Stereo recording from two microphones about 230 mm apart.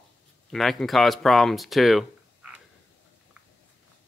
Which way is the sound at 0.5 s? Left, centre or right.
Centre.